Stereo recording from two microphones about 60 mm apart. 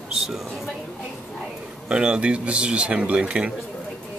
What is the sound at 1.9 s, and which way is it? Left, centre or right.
Speech, centre.